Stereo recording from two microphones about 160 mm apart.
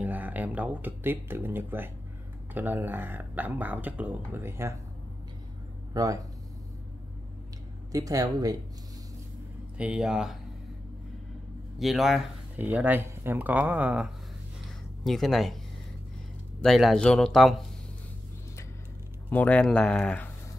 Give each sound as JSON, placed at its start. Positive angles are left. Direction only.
{"t": 0.0, "sound": "speech", "side_deg": -10}
{"t": 5.9, "sound": "speech", "side_deg": -20}
{"t": 7.9, "sound": "speech", "side_deg": -20}
{"t": 9.8, "sound": "speech", "side_deg": -5}
{"t": 11.8, "sound": "speech", "side_deg": 0}
{"t": 16.6, "sound": "speech", "side_deg": 0}
{"t": 19.2, "sound": "speech", "side_deg": 10}